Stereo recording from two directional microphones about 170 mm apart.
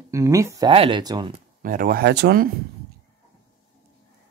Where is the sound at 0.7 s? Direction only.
30° right (ahead or behind).